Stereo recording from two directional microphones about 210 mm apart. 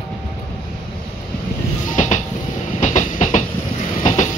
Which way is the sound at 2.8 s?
35° left (ahead or behind).